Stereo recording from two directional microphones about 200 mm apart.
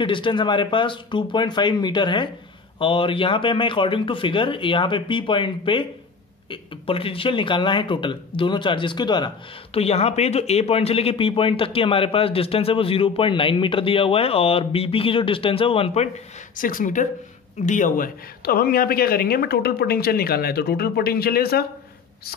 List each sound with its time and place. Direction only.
0.0 s speech: 25° left (ahead or behind)
16.5 s speech: 45° left (ahead or behind)